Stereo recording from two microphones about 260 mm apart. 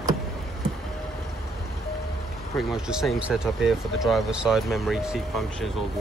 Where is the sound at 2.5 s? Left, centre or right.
Centre.